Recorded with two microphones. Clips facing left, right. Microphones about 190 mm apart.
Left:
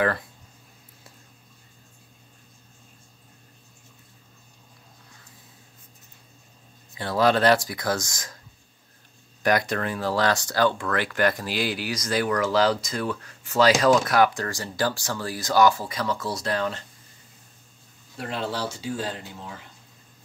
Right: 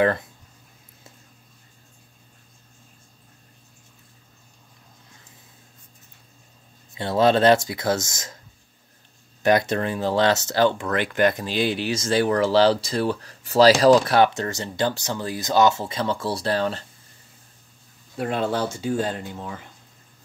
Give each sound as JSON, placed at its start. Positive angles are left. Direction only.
{"t": 0.0, "sound": "speech", "side_deg": -20}
{"t": 7.0, "sound": "speech", "side_deg": -25}
{"t": 9.4, "sound": "speech", "side_deg": -25}
{"t": 18.1, "sound": "speech", "side_deg": -50}